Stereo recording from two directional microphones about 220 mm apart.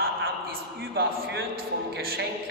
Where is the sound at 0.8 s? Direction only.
45° right (ahead or behind).